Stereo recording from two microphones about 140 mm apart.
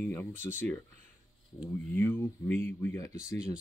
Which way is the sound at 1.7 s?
15° left (ahead or behind).